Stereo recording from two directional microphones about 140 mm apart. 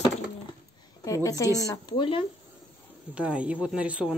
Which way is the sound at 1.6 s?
35° left (ahead or behind).